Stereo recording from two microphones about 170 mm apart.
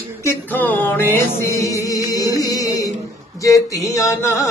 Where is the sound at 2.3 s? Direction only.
20° left (ahead or behind).